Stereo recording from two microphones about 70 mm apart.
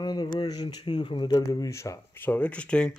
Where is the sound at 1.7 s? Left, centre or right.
Left.